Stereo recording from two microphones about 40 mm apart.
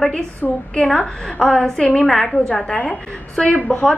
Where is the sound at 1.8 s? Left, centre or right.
Left.